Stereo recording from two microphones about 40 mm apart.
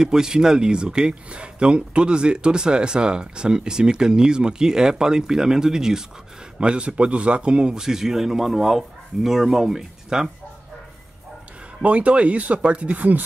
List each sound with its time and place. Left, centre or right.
0.0 s speech: centre
11.8 s speech: right